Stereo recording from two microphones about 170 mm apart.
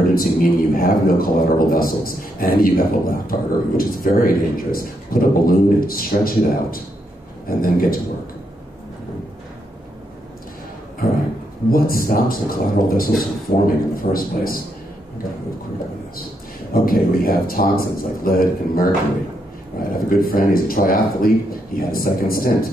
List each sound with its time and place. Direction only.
0.1 s speech: 55° left (ahead or behind)
11.7 s speech: 60° left (ahead or behind)
16.7 s speech: 55° left (ahead or behind)
19.9 s speech: 55° left (ahead or behind)